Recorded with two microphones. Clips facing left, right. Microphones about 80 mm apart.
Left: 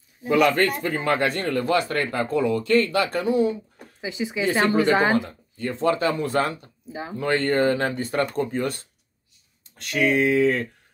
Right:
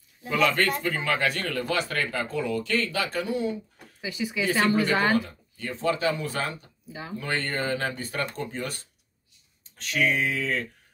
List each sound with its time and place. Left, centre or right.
0.3 s speech: left
0.8 s speech: left
5.6 s speech: left
6.9 s speech: left
7.2 s speech: left
9.9 s speech: left